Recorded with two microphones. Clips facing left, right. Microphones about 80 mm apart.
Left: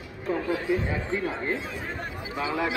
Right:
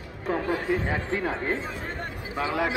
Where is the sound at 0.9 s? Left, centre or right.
Right.